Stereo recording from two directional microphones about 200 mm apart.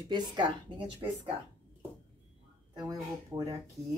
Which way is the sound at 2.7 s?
20° right (ahead or behind).